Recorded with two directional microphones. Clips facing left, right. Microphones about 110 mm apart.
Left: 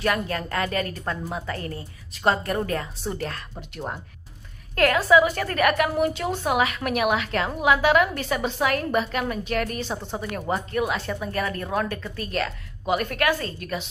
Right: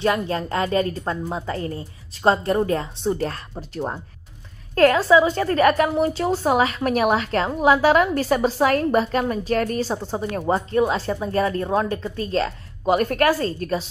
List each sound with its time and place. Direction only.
0.0 s a woman's voice: 25° right (ahead or behind)
12.8 s a woman's voice: 40° right (ahead or behind)